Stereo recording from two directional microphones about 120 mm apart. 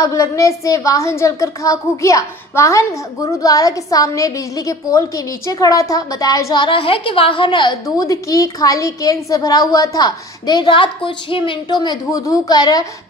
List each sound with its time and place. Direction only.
0.0 s a woman's voice: 25° left (ahead or behind)
6.6 s a woman's voice: 45° left (ahead or behind)
8.0 s a woman's voice: 30° left (ahead or behind)